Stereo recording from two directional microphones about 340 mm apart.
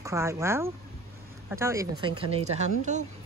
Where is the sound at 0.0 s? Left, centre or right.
Centre.